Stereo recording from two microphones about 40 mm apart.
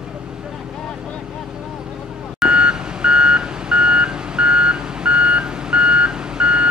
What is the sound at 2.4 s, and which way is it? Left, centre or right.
Reversing beeps, right.